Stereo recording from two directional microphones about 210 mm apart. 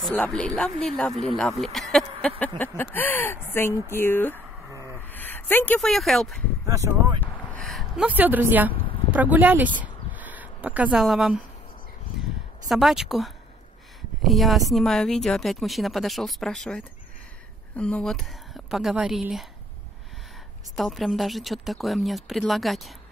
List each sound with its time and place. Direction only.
0.0 s speech: 5° left (ahead or behind)
6.7 s speech: 15° right (ahead or behind)
7.2 s a sound: 5° left (ahead or behind)
9.1 s speech: 10° right (ahead or behind)
10.1 s a sound: 10° right (ahead or behind)
12.6 s speech: centre (ahead or behind)
20.7 s speech: centre (ahead or behind)